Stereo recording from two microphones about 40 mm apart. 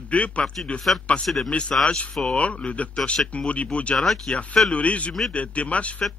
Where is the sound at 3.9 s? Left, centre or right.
Centre.